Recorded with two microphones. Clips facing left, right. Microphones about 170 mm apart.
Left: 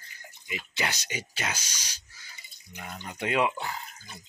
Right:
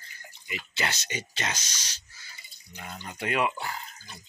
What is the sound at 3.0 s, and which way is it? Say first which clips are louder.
Speech: left 1 dB; 15° left (ahead or behind).